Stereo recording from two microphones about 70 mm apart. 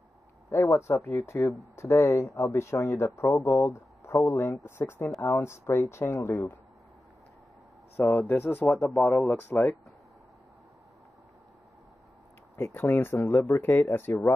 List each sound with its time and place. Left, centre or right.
0.5 s speech: left
8.0 s speech: left
12.5 s speech: left